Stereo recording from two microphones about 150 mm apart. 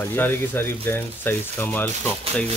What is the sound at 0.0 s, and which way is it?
Speech, 15° left (ahead or behind).